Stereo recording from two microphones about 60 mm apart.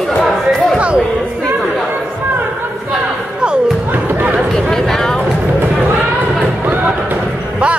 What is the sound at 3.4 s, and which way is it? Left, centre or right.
Music, centre.